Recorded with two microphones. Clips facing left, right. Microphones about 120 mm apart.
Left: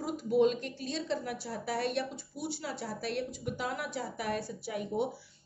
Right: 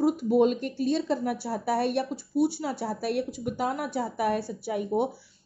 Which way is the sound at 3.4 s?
45° right (ahead or behind).